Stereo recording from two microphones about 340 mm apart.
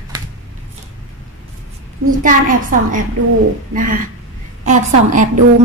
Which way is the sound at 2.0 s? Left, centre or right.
Right.